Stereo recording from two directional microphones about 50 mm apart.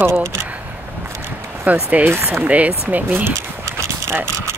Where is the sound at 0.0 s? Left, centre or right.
Right.